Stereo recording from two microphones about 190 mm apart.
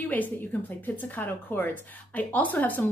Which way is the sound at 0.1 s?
10° left (ahead or behind).